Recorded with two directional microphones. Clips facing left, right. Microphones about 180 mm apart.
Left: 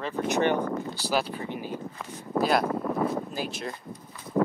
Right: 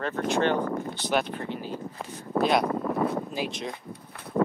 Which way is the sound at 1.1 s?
5° left (ahead or behind).